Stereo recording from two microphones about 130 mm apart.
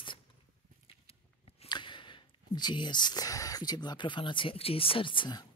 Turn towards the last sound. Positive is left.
turn(degrees=35)  # may be behind; listen again after turning